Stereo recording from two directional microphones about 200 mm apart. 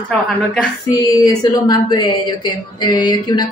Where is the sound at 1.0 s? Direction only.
15° left (ahead or behind).